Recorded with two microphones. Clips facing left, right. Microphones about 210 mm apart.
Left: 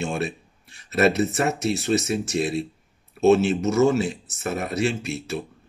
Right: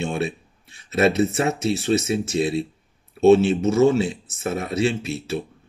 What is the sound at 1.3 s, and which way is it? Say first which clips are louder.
Speech: right 1 dB; centre (ahead or behind).